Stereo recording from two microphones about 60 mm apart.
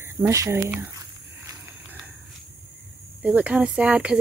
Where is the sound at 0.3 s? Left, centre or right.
Right.